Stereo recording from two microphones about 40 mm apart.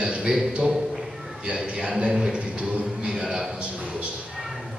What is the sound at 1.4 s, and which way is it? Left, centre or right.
Speech, right.